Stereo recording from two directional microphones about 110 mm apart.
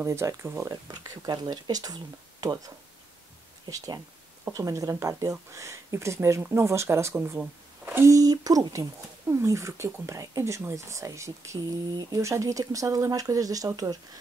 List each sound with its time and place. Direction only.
0.0 s speech: 25° right (ahead or behind)